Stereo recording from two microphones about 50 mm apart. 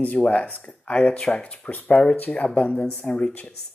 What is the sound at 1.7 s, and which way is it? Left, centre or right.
Speech, left.